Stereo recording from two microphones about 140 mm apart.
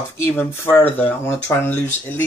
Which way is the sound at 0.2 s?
15° left (ahead or behind).